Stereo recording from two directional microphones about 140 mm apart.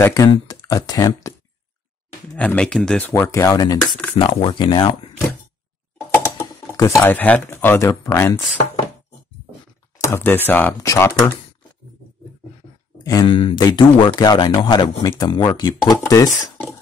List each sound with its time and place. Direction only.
0.0 s speech: 20° left (ahead or behind)
2.3 s speech: 10° left (ahead or behind)
3.1 s speech: 20° left (ahead or behind)
4.2 s speech: 35° left (ahead or behind)
6.4 s speech: 25° left (ahead or behind)
10.0 s speech: 15° left (ahead or behind)
13.0 s speech: 30° left (ahead or behind)